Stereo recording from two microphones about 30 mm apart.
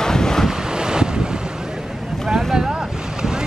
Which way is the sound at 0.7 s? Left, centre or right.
Right.